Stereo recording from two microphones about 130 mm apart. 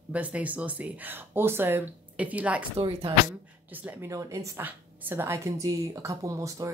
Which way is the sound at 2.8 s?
40° right (ahead or behind).